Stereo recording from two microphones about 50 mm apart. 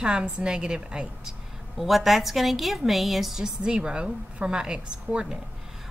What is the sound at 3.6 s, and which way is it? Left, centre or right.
A woman's voice, right.